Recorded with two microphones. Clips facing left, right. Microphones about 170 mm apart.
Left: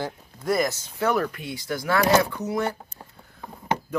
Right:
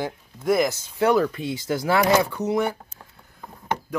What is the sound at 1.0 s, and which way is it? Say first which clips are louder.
Speech: right 5 dB; 20° right (ahead or behind).